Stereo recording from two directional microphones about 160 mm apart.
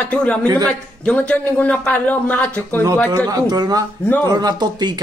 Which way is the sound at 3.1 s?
25° right (ahead or behind).